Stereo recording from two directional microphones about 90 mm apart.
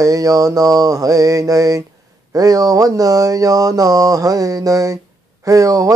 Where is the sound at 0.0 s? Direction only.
40° right (ahead or behind).